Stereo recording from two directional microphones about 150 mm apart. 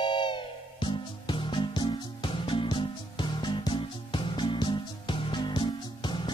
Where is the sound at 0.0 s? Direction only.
30° left (ahead or behind).